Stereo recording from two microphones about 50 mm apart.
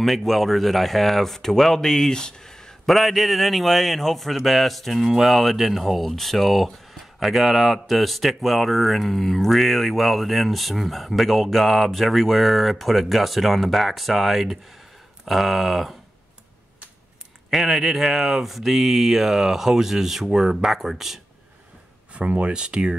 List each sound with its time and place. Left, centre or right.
0.0 s speech: centre
2.9 s speech: centre
17.5 s speech: centre
22.1 s speech: right